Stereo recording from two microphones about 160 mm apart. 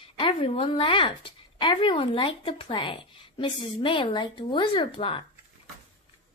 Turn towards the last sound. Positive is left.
turn(degrees=30)  # may be behind; listen again after turning